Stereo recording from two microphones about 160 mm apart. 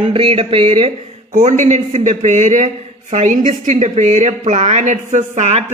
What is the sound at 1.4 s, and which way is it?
Speech, 45° right (ahead or behind).